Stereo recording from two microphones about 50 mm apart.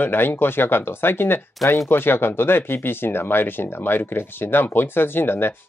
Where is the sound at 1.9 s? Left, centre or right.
Left.